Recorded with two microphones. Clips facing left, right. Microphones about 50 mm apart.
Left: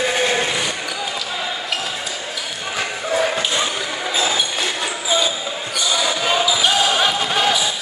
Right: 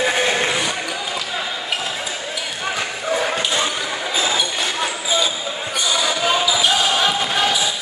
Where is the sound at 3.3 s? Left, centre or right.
Centre.